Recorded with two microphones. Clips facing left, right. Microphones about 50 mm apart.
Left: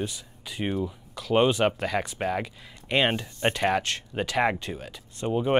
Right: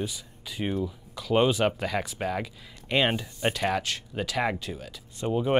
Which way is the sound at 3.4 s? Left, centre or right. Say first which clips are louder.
Left 3 dB; centre.